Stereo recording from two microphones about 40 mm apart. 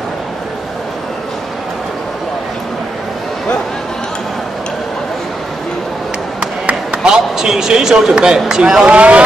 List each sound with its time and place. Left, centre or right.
6.6 s chop: right
7.0 s speech: centre
8.8 s speech: right